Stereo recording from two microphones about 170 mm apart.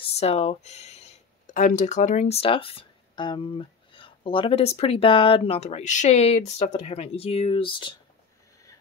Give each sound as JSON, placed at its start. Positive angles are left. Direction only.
{"t": 0.2, "sound": "speech", "side_deg": 40}